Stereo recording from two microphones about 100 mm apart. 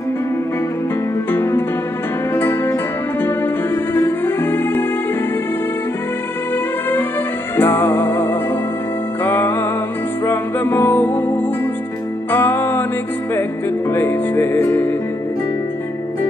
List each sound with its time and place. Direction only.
1.3 s music: 25° left (ahead or behind)
7.5 s music: 20° left (ahead or behind)